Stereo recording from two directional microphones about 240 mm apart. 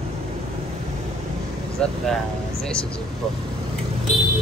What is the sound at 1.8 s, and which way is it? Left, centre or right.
Speech, centre.